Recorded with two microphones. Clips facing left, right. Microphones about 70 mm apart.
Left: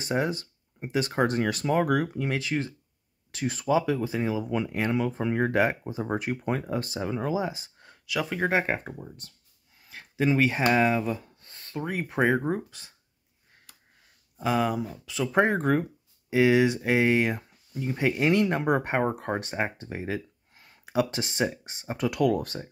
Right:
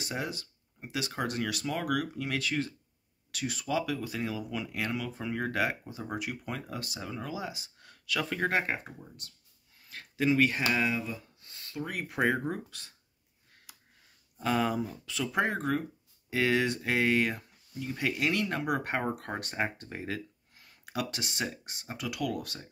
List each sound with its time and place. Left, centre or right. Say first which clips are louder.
0.0 s speech: left 8 dB; left
6.6 s speech: left 9 dB; left
8.2 s speech: left 4 dB; centre
8.8 s speech: left 7 dB; left
9.8 s speech: left 3 dB; centre
10.7 s a sound: left 7 dB; left
11.8 s speech: left 4 dB; left
13.7 s a sound: right 1 dB; centre
14.4 s speech: left 3 dB; centre
15.3 s speech: left 7 dB; left
16.3 s speech: left 7 dB; centre
21.9 s speech: left 9 dB; left